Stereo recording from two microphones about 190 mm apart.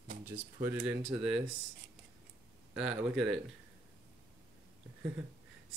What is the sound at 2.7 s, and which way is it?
Speech, 5° right (ahead or behind).